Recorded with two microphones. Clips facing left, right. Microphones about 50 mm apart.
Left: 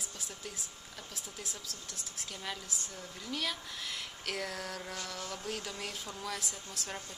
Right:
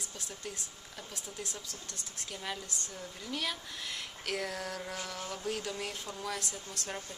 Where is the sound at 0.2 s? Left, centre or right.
Centre.